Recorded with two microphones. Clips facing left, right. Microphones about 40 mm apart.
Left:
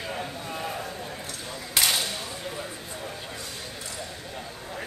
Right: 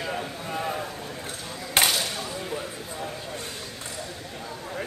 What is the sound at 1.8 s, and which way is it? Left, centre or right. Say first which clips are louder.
Whip: right 3 dB; right.